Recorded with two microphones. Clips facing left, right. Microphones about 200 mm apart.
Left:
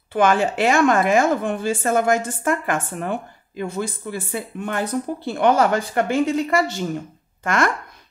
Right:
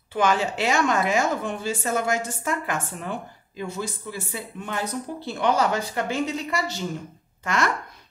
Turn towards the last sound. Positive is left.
turn(degrees=50)  # may be behind; listen again after turning